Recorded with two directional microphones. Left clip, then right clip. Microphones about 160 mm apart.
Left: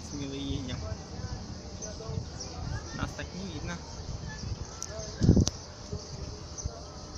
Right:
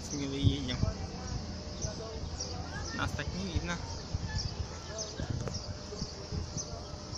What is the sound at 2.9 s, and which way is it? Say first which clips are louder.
Speech: right 2 dB; 15° right (ahead or behind).